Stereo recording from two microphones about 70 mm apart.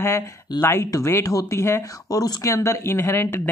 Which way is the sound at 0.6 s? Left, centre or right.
Left.